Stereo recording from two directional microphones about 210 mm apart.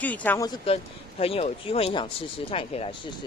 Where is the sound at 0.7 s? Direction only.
25° left (ahead or behind).